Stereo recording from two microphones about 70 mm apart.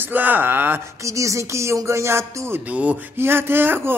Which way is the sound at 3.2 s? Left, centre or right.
Right.